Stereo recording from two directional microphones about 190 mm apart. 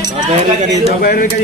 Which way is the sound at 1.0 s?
50° left (ahead or behind).